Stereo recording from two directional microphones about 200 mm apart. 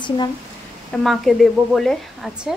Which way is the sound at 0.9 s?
Centre (ahead or behind).